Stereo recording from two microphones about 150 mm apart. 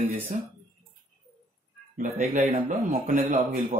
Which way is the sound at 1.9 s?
65° right (ahead or behind).